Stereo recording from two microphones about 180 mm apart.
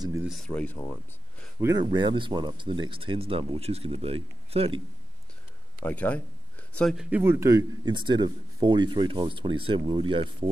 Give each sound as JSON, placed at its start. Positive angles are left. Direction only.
{"t": 0.2, "sound": "speech", "side_deg": 0}
{"t": 0.5, "sound": "a man's voice", "side_deg": 10}
{"t": 1.6, "sound": "speech", "side_deg": -20}
{"t": 5.9, "sound": "a man's voice", "side_deg": 10}
{"t": 7.1, "sound": "speech", "side_deg": -10}